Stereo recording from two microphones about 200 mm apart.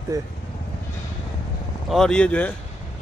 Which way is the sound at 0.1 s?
15° right (ahead or behind).